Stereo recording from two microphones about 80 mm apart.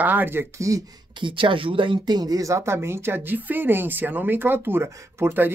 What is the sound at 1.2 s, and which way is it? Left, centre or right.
Speech, right.